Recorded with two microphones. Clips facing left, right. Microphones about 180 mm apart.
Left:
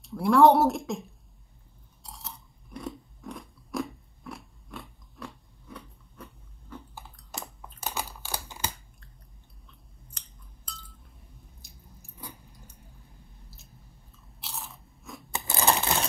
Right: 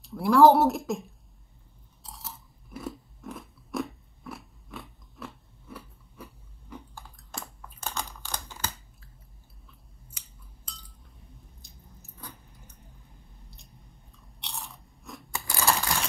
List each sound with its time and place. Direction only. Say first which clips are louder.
0.0 s a woman's voice: right 1 dB; centre (ahead or behind)
2.0 s chewing: even; centre (ahead or behind)
7.8 s computer keyboard: left 1 dB; 10° left (ahead or behind)
10.0 s a sound: even; 10° right (ahead or behind)
11.6 s chewing: even; 10° left (ahead or behind)
14.4 s crunch: even; centre (ahead or behind)
15.3 s a sound: left 1 dB; 20° left (ahead or behind)